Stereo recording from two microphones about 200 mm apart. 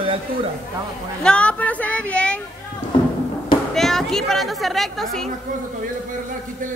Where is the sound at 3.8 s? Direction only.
Centre (ahead or behind).